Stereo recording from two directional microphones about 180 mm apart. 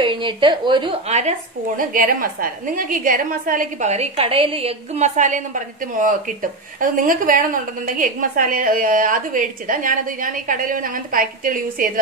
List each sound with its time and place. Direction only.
0.0 s a woman's voice: 25° right (ahead or behind)
1.8 s a woman's voice: 50° right (ahead or behind)